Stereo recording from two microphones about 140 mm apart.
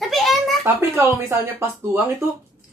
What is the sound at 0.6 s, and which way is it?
Speech, 20° right (ahead or behind).